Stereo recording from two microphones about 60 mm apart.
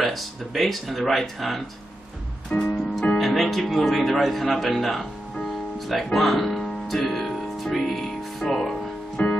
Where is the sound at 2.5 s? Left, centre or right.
Centre.